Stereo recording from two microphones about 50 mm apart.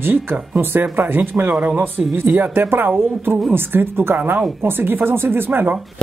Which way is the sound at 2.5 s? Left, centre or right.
Right.